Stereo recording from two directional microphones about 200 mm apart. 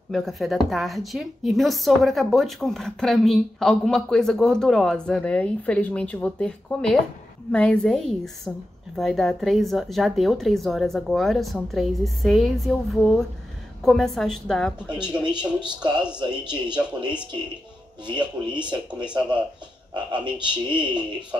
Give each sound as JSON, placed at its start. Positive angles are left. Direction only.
{"t": 0.1, "sound": "a woman's voice", "side_deg": 0}
{"t": 18.2, "sound": "a woman's voice", "side_deg": -5}
{"t": 19.9, "sound": "speech", "side_deg": -25}
{"t": 20.8, "sound": "a woman's voice", "side_deg": -5}